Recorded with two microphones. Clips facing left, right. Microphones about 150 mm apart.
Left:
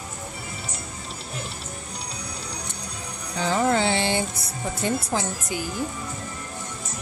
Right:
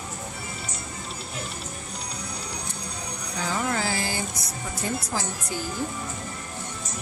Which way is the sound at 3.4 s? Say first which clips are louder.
Left 6 dB; 30° left (ahead or behind).